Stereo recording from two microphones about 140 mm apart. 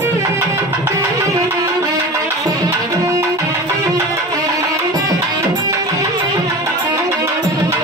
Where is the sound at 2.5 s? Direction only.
25° right (ahead or behind).